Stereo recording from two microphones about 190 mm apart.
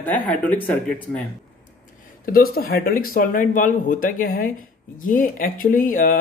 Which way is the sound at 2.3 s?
50° left (ahead or behind).